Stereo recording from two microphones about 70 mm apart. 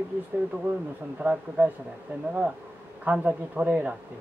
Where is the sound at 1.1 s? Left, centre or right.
Right.